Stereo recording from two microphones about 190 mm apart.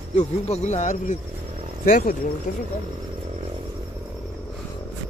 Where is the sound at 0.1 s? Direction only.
35° left (ahead or behind).